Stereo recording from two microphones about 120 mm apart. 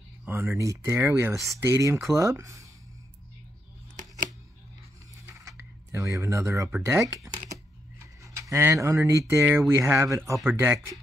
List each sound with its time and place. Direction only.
0.2 s speech: 20° right (ahead or behind)
1.3 s speech: centre (ahead or behind)
1.6 s speech: 20° right (ahead or behind)
5.2 s a sound: 25° right (ahead or behind)
6.8 s speech: 25° right (ahead or behind)